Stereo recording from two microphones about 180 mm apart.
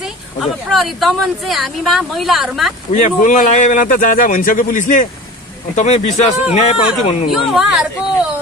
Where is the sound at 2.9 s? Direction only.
45° left (ahead or behind).